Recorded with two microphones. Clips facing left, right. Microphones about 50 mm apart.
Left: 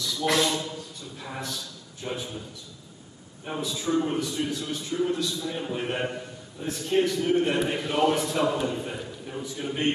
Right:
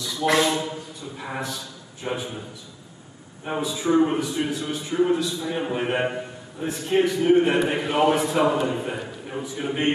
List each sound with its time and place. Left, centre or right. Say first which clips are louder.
0.0 s a sound: right 4 dB; centre
1.4 s a man's voice: right 4 dB; right
3.6 s a man's voice: right 6 dB; right